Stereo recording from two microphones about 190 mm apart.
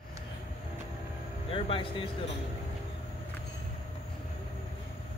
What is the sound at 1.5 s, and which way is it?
Speech, 30° left (ahead or behind).